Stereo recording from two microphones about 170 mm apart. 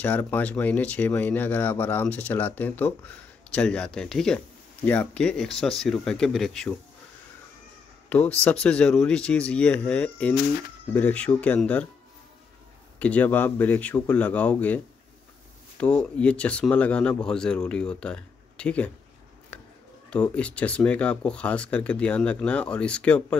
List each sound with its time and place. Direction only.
0.0 s speech: 10° left (ahead or behind)
8.1 s speech: 5° left (ahead or behind)
13.0 s speech: 10° left (ahead or behind)
15.8 s speech: 5° left (ahead or behind)
19.5 s a sound: 10° left (ahead or behind)
20.1 s speech: 5° left (ahead or behind)